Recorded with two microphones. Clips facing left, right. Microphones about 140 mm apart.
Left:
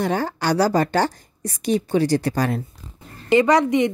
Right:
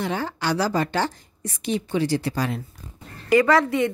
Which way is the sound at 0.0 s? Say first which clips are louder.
Left 4 dB; 45° left (ahead or behind).